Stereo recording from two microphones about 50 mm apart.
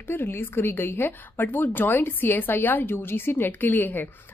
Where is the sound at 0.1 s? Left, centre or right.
Left.